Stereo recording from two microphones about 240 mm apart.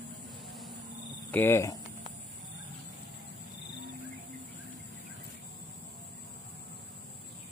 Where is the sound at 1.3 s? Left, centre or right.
Centre.